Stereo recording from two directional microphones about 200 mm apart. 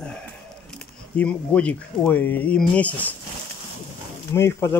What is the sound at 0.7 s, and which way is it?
Speech, 5° left (ahead or behind).